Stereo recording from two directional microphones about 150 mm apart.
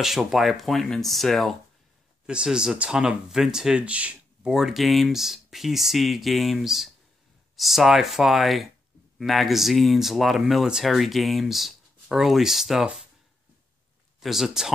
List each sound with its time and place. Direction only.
0.0 s speech: centre (ahead or behind)
14.2 s speech: 5° right (ahead or behind)